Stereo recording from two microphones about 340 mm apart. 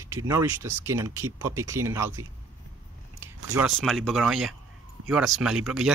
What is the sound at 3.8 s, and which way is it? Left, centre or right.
Speech, centre.